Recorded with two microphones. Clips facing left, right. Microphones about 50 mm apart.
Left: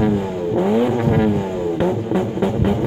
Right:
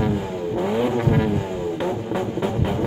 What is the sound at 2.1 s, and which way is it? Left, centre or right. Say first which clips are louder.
Music: left 4 dB; centre.